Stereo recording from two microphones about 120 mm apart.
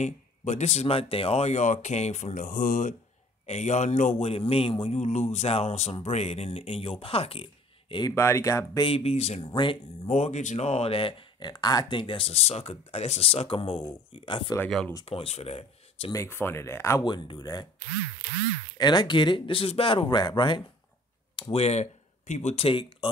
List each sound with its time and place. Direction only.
0.0 s speech: 70° left (ahead or behind); by 3.0 s 90° left
3.4 s a man's voice: 70° left (ahead or behind); by 7.4 s 55° left (ahead or behind)
8.1 s speech: 20° left (ahead or behind)
8.8 s a man's voice: 55° left (ahead or behind)
9.5 s speech: 40° left (ahead or behind)
10.0 s speech: 65° left (ahead or behind)
16.1 s speech: 20° left (ahead or behind)
17.0 s speech: 40° left (ahead or behind)
18.8 s speech: 35° left (ahead or behind)
21.4 s speech: 55° left (ahead or behind)